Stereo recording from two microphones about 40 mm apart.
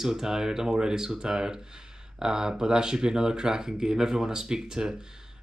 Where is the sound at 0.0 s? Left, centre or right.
Centre.